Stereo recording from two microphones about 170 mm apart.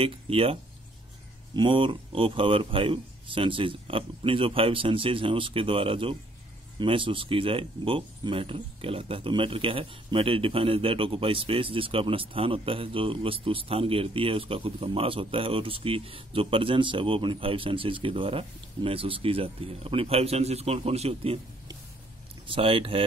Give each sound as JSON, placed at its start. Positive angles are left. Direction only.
{"t": 0.0, "sound": "speech", "side_deg": -35}
{"t": 22.5, "sound": "speech", "side_deg": -30}